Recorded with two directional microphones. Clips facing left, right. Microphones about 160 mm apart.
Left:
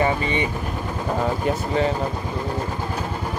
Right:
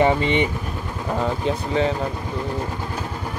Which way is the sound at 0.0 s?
20° right (ahead or behind).